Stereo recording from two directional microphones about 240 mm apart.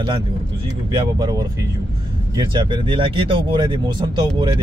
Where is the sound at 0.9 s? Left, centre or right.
Centre.